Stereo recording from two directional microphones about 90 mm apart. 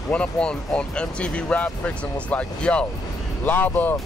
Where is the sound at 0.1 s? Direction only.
10° left (ahead or behind).